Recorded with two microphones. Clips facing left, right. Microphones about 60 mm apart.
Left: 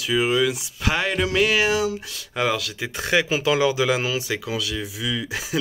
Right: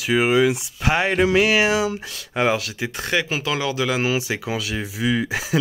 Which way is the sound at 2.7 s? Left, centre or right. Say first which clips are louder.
Left 1 dB; centre.